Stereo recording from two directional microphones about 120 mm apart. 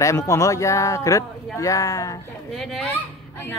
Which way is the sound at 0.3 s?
25° left (ahead or behind).